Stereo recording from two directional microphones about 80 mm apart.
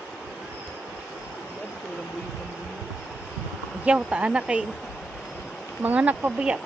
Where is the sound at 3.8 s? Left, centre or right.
Centre.